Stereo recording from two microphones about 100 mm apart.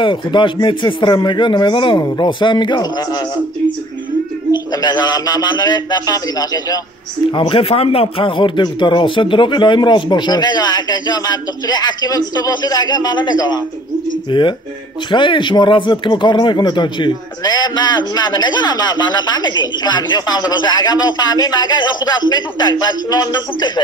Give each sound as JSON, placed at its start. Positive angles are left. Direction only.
{"t": 0.0, "sound": "speech", "side_deg": 55}
{"t": 4.8, "sound": "speech", "side_deg": 45}
{"t": 7.2, "sound": "speech", "side_deg": 55}